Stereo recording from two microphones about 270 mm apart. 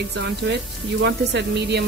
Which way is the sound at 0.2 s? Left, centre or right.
Right.